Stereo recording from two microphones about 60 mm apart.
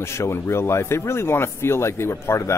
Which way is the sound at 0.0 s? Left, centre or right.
Left.